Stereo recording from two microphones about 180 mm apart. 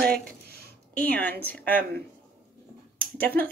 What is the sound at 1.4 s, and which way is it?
Speech, 10° left (ahead or behind).